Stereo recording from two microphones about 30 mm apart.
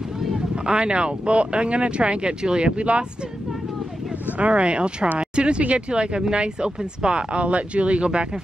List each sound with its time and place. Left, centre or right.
0.7 s speech: right
2.8 s speech: right
4.4 s speech: right